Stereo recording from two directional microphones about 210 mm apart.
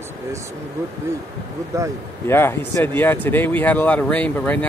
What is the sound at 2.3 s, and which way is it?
Speech, 10° left (ahead or behind).